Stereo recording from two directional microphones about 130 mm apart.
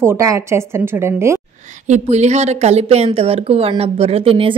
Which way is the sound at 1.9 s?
60° right (ahead or behind).